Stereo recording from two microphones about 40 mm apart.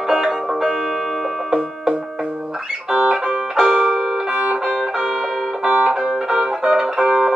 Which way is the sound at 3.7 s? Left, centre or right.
Centre.